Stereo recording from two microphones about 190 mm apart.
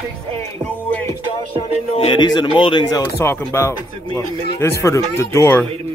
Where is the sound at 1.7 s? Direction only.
30° left (ahead or behind).